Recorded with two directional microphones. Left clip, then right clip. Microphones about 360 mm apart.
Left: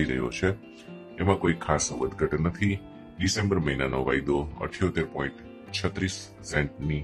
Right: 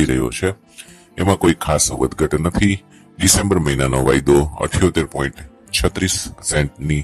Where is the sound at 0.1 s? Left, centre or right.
Right.